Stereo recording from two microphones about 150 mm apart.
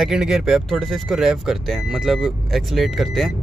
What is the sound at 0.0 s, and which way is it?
Speech, 5° right (ahead or behind).